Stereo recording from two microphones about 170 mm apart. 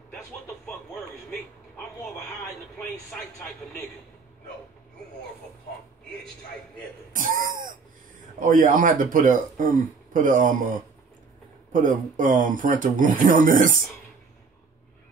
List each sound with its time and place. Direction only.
2.8 s speech: 5° left (ahead or behind)
7.1 s speech: 50° right (ahead or behind)
11.7 s speech: 50° right (ahead or behind)